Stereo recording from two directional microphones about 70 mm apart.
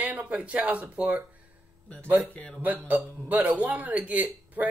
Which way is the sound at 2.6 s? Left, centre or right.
Right.